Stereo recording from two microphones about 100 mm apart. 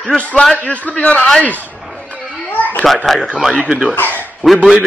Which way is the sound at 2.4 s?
15° left (ahead or behind).